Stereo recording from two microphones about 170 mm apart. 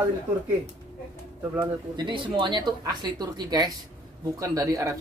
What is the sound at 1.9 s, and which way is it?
Speech, 30° right (ahead or behind).